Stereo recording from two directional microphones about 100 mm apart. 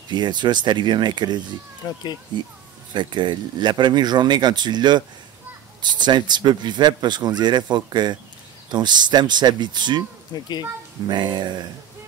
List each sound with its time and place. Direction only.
0.1 s a man's voice: 50° right (ahead or behind)
11.1 s a man's voice: 50° right (ahead or behind)